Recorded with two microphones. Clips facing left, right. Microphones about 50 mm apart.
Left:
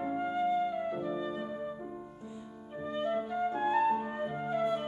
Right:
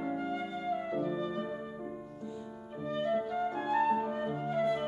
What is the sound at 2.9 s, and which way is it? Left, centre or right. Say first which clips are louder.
Music: right 1 dB; left.